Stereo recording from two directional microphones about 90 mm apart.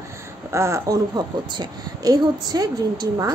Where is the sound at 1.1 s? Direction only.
50° right (ahead or behind).